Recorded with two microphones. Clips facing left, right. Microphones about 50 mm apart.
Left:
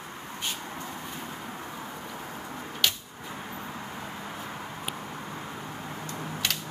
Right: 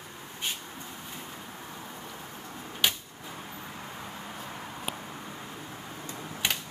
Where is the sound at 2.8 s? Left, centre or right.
Centre.